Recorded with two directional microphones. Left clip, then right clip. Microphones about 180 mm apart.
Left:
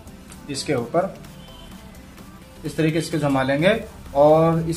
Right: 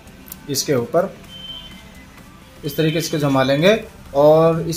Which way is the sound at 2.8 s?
60° right (ahead or behind).